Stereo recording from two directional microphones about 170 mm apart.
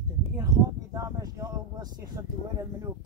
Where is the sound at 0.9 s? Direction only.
20° right (ahead or behind).